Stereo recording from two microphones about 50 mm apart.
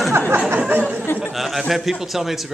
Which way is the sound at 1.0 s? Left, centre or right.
Left.